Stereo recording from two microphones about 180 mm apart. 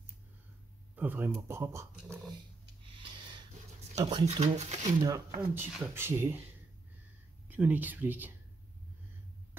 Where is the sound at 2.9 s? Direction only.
25° right (ahead or behind).